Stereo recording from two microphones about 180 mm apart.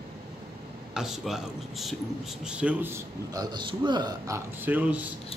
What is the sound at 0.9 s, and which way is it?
A man's voice, centre (ahead or behind).